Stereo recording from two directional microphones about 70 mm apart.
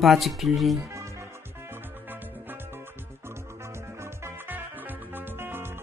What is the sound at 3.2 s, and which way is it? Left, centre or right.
Music, right.